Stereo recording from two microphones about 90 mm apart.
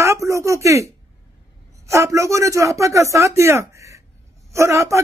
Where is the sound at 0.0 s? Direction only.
35° right (ahead or behind).